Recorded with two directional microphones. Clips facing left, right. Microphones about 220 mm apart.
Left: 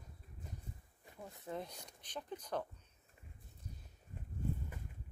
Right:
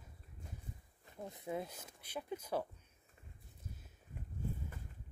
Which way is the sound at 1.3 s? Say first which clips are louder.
Right 3 dB; 10° right (ahead or behind).